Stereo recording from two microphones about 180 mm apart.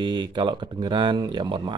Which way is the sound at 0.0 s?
25° right (ahead or behind).